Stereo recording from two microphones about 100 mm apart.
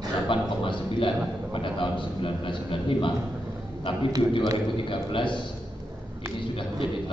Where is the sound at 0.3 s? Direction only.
60° left (ahead or behind).